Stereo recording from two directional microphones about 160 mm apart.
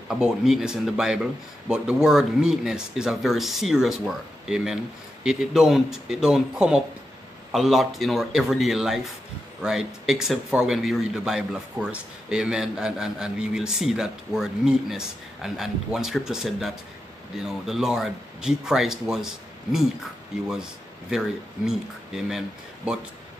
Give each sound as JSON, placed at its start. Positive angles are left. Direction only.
{"t": 0.1, "sound": "a man's voice", "side_deg": -5}